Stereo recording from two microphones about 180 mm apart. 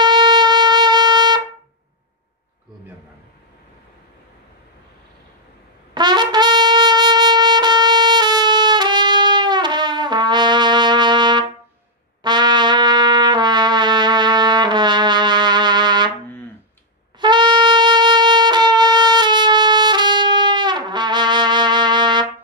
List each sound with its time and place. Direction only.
0.0 s music: 25° right (ahead or behind)
5.9 s trumpet: 25° right (ahead or behind)
17.2 s music: 25° right (ahead or behind)